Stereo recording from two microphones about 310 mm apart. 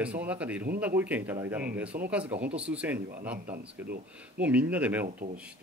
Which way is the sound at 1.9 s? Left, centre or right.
Right.